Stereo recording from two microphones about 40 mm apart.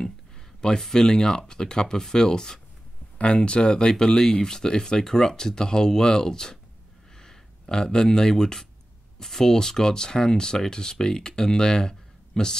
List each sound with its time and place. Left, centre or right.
0.6 s speech: centre